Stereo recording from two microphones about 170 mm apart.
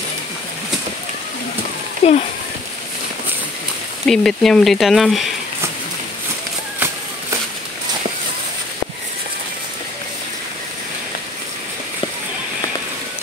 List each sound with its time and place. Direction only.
2.0 s speech: 40° left (ahead or behind)
4.0 s speech: centre (ahead or behind)